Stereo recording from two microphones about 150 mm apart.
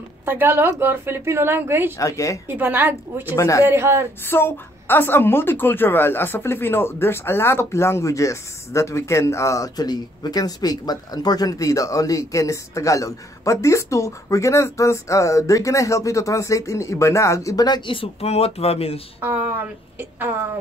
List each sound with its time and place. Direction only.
0.2 s a woman's voice: 15° right (ahead or behind)
2.0 s a woman's voice: 20° left (ahead or behind)
2.4 s a woman's voice: 15° right (ahead or behind)
3.3 s a woman's voice: 20° left (ahead or behind)
3.6 s a woman's voice: 15° right (ahead or behind)
4.3 s a woman's voice: 15° left (ahead or behind); by 18.9 s 40° left (ahead or behind)
19.2 s a woman's voice: 10° right (ahead or behind)